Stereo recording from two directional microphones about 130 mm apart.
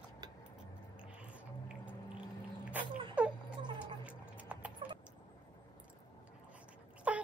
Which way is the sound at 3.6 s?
35° right (ahead or behind).